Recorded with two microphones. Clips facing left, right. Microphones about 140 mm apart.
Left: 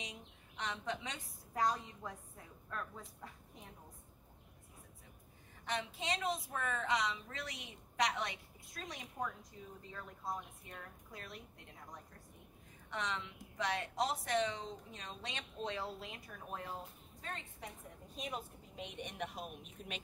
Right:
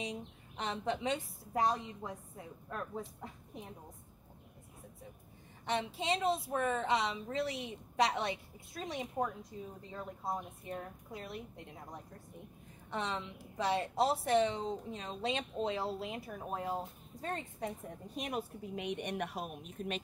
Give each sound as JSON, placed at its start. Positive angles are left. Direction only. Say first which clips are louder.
{"t": 0.0, "sound": "a woman's voice", "louder": "right 9 dB", "side_deg": -30}
{"t": 5.7, "sound": "a woman's voice", "louder": "right 5 dB", "side_deg": -30}
{"t": 12.9, "sound": "a woman's voice", "louder": "right 4 dB", "side_deg": -30}
{"t": 18.1, "sound": "a woman's voice", "louder": "right 5 dB", "side_deg": -65}